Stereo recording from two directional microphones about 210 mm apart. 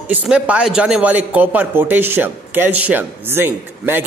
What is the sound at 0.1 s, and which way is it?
A man's voice, 5° right (ahead or behind).